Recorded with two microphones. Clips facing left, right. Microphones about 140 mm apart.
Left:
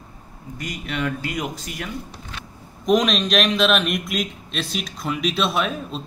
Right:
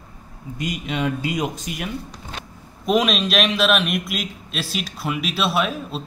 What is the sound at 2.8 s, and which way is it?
A man's voice, 5° right (ahead or behind).